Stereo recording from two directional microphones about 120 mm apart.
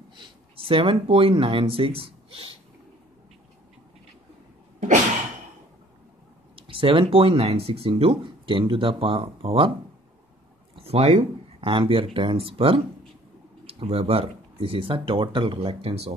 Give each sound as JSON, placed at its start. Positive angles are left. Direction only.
{"t": 0.1, "sound": "speech", "side_deg": -50}
{"t": 4.7, "sound": "a sound", "side_deg": -80}
{"t": 6.5, "sound": "speech", "side_deg": -45}
{"t": 10.8, "sound": "speech", "side_deg": -60}
{"t": 11.7, "sound": "speech", "side_deg": -45}